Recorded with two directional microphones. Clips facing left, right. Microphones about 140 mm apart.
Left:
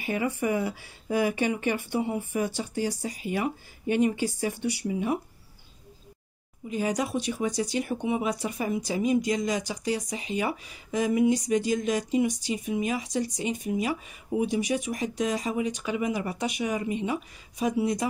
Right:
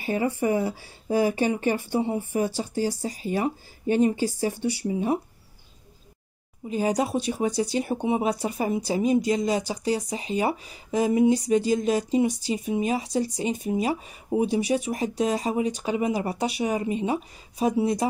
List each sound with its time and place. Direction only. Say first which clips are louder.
0.0 s speech: right 3 dB; 35° right (ahead or behind)
6.7 s speech: right 3 dB; 35° right (ahead or behind)